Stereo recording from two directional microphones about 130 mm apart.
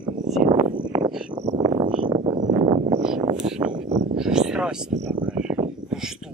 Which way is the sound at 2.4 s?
70° right (ahead or behind).